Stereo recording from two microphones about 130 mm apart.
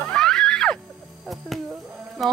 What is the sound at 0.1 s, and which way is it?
Music, 5° left (ahead or behind).